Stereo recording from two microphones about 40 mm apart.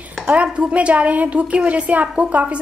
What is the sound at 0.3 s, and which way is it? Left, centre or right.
A woman's voice, right.